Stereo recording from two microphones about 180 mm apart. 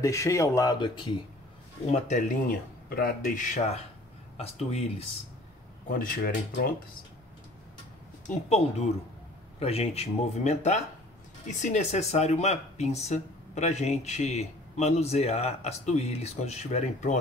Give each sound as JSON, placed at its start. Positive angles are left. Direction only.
{"t": 0.0, "sound": "speech", "side_deg": 15}
{"t": 1.9, "sound": "speech", "side_deg": 40}
{"t": 2.9, "sound": "speech", "side_deg": 55}
{"t": 5.9, "sound": "speech", "side_deg": 50}
{"t": 8.3, "sound": "speech", "side_deg": 35}